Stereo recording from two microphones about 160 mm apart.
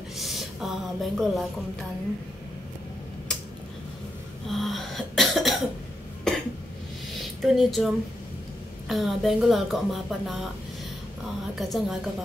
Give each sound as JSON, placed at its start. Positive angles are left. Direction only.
{"t": 0.2, "sound": "a sound", "side_deg": 0}
{"t": 4.5, "sound": "cough", "side_deg": 0}
{"t": 7.4, "sound": "a woman's voice", "side_deg": 0}
{"t": 11.5, "sound": "a woman's voice", "side_deg": 0}